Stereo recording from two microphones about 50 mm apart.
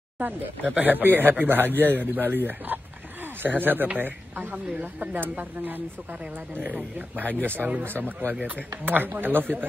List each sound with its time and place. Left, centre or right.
0.2 s speech: right
8.8 s speech: right